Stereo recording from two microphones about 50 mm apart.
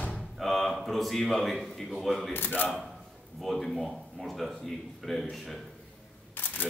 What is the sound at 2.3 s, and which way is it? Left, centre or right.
Speech, left.